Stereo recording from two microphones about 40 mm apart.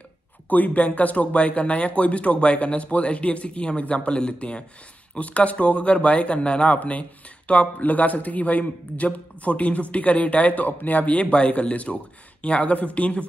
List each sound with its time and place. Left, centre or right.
0.5 s speech: left